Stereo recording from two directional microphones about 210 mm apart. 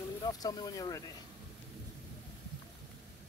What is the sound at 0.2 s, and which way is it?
Speech, 15° left (ahead or behind).